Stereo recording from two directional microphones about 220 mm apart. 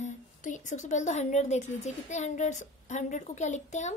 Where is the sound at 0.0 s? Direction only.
35° left (ahead or behind).